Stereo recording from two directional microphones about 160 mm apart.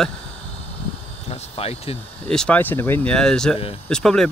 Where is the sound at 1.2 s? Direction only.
35° left (ahead or behind).